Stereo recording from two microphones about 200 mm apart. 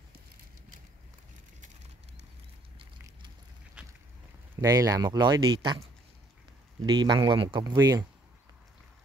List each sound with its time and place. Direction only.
4.6 s speech: 15° right (ahead or behind)
6.9 s speech: 20° right (ahead or behind)